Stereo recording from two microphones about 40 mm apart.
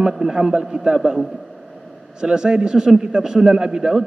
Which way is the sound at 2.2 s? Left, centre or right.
Centre.